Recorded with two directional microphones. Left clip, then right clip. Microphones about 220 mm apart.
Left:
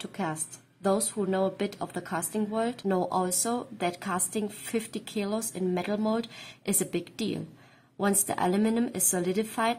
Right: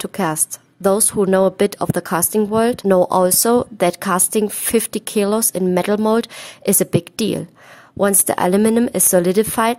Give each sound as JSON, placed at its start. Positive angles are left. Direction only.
{"t": 0.0, "sound": "a woman's voice", "side_deg": -50}